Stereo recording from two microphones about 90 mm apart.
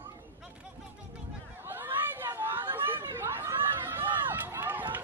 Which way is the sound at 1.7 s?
25° right (ahead or behind).